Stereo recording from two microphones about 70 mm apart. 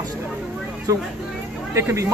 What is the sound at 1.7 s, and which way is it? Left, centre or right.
Speech, right.